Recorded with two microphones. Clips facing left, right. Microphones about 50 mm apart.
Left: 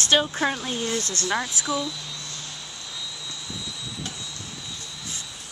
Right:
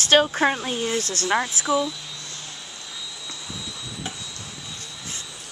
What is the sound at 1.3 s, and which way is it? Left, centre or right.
Speech, centre.